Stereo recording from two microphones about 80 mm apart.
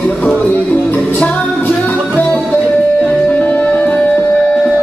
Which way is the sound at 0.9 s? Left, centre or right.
Centre.